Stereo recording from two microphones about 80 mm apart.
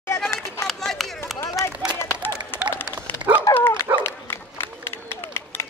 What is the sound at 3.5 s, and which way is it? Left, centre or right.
Dog, left.